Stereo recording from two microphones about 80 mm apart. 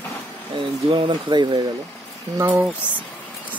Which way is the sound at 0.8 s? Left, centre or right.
Right.